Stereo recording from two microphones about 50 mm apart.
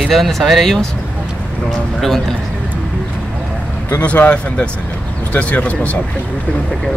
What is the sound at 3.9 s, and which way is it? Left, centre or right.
Speech, left.